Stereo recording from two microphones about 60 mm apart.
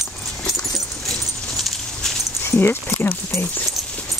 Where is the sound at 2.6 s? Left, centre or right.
Left.